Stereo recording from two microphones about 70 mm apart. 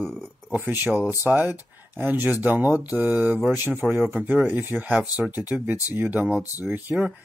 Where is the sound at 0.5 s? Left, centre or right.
Right.